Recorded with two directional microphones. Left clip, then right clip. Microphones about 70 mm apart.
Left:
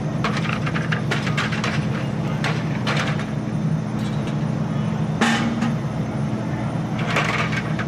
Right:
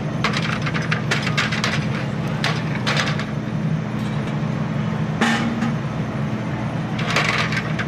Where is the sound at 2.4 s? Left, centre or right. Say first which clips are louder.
Right 3 dB; right.